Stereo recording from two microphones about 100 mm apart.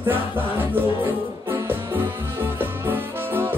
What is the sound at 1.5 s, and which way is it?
Music, 20° right (ahead or behind).